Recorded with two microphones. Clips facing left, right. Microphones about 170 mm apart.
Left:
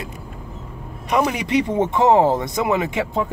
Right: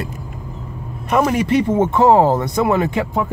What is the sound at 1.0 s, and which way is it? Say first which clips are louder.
Speech: right 4 dB; 50° right (ahead or behind).